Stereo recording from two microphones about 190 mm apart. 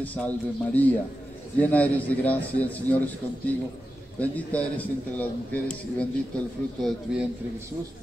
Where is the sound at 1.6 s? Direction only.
10° left (ahead or behind).